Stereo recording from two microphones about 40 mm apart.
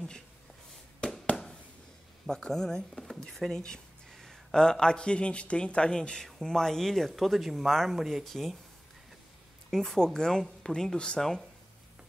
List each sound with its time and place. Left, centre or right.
2.2 s speech: centre
9.7 s speech: centre
9.9 s speech: centre